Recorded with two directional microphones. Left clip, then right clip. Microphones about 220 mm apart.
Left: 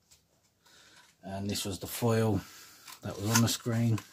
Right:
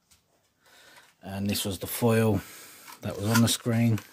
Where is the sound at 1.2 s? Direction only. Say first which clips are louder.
Right 4 dB; 35° right (ahead or behind).